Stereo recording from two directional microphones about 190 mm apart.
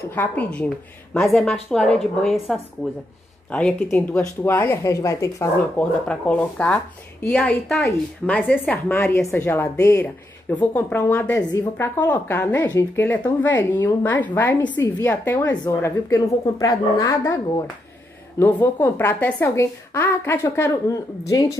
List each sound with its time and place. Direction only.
0.1 s a woman's voice: 10° left (ahead or behind)
18.4 s speech: 10° left (ahead or behind)